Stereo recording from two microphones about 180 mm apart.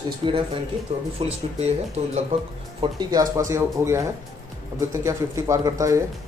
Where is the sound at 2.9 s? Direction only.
20° right (ahead or behind).